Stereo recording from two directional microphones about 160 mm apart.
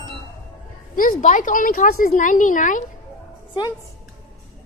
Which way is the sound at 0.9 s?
55° left (ahead or behind).